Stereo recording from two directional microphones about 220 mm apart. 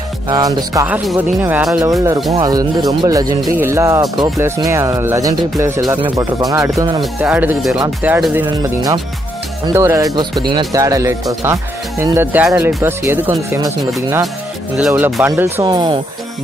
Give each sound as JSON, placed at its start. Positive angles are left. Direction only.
{"t": 0.3, "sound": "speech", "side_deg": -20}
{"t": 14.8, "sound": "speech", "side_deg": -5}